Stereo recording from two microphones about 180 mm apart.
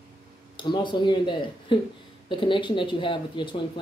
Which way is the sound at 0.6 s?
25° left (ahead or behind).